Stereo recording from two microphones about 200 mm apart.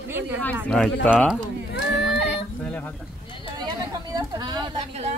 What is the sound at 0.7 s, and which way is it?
Speech, 5° left (ahead or behind).